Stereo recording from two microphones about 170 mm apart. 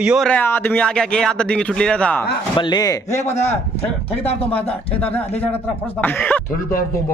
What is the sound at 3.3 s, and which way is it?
A man's voice, 40° left (ahead or behind).